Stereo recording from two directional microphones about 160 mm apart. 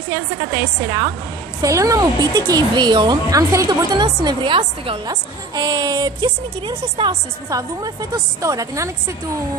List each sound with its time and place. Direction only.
0.1 s speech: 25° right (ahead or behind)